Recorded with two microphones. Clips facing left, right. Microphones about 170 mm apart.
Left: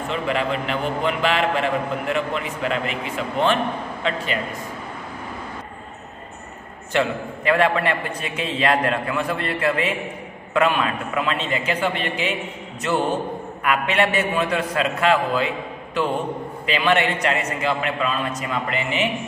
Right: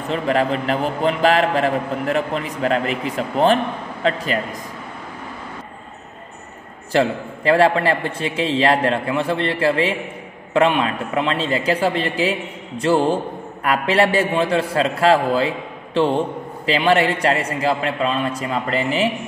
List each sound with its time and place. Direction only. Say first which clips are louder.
0.1 s a man's voice: right 5 dB; 40° right (ahead or behind)
6.9 s a man's voice: right 4 dB; 35° right (ahead or behind)